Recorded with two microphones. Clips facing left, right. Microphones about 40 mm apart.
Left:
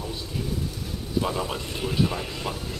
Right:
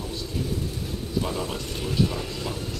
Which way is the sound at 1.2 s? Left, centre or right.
Centre.